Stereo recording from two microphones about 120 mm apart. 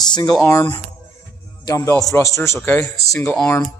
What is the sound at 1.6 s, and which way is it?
Speech, 25° left (ahead or behind).